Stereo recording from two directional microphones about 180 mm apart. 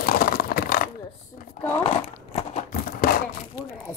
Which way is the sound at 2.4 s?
45° left (ahead or behind).